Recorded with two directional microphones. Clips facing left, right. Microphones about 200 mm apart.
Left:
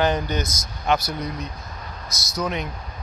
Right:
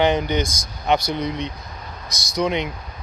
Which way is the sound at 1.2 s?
85° right.